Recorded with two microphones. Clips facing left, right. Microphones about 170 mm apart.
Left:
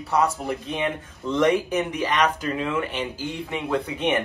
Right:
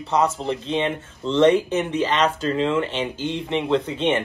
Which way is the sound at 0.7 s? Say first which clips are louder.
Right 3 dB; 25° right (ahead or behind).